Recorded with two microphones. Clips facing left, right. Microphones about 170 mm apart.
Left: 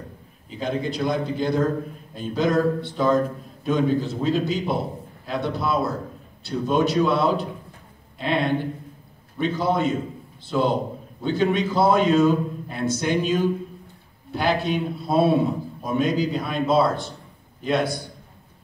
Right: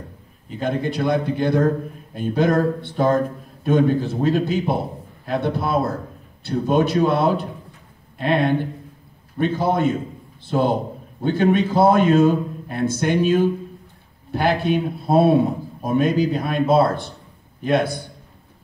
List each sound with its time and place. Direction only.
0.5 s a man's voice: 55° right (ahead or behind)